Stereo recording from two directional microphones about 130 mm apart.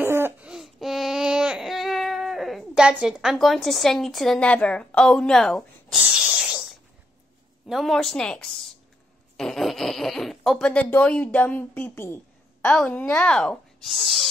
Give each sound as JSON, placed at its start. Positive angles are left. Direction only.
{"t": 0.0, "sound": "laughter", "side_deg": -15}
{"t": 0.5, "sound": "baby cry", "side_deg": 0}
{"t": 7.6, "sound": "a child's voice", "side_deg": 0}